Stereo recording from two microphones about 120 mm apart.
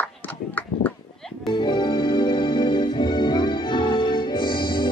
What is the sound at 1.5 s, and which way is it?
Organ, 40° left (ahead or behind).